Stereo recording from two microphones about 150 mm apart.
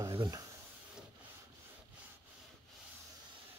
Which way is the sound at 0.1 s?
30° right (ahead or behind).